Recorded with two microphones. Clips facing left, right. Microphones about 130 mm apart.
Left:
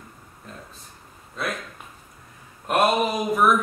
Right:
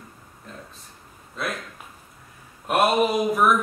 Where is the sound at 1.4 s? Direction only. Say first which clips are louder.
Even; centre (ahead or behind).